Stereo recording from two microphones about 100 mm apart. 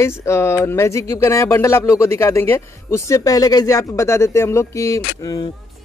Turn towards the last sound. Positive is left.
turn(degrees=30)  # may be behind; listen again after turning